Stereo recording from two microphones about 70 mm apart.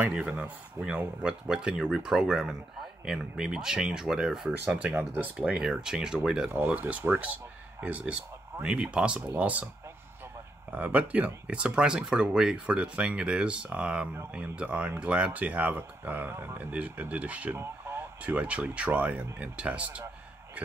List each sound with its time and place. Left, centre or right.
0.1 s speech: centre
4.9 s speech: right
5.6 s speech: centre
6.5 s speech: right
8.6 s speech: centre
10.7 s speech: right
17.6 s radio: right
18.2 s speech: centre